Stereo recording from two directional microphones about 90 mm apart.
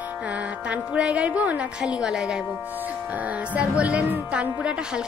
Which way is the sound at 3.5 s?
15° right (ahead or behind).